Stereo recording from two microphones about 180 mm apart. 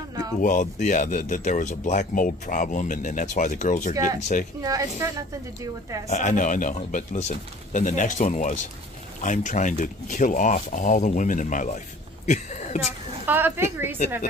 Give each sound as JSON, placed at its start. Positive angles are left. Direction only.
{"t": 0.4, "sound": "speech", "side_deg": 45}
{"t": 3.9, "sound": "speech", "side_deg": -20}
{"t": 6.0, "sound": "a woman's voice", "side_deg": 40}
{"t": 13.3, "sound": "speech", "side_deg": -10}